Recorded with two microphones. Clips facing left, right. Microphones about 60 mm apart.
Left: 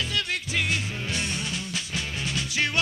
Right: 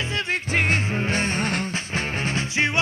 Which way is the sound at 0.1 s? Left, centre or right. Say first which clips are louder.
Right 4 dB; right.